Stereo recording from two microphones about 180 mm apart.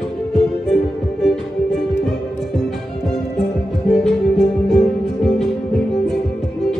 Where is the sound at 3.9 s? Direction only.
5° left (ahead or behind).